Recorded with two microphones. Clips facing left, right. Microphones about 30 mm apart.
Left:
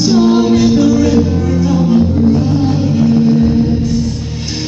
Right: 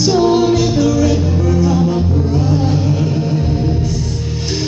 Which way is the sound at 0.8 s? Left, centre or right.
Left.